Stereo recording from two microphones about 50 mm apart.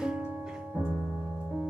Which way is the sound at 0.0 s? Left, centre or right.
Centre.